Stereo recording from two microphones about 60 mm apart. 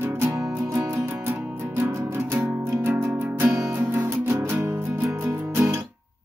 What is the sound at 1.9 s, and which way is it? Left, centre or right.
Music, right.